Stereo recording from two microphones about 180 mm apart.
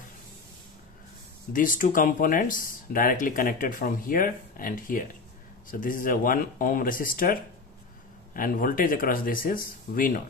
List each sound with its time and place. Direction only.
1.5 s speech: 50° left (ahead or behind)